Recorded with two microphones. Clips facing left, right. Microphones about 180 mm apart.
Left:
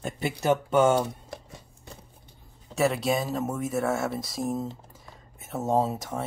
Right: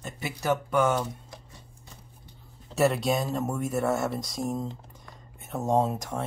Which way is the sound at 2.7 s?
Centre (ahead or behind).